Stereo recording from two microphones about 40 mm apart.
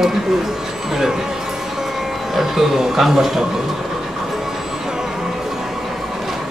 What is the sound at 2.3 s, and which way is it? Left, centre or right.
Speech, centre.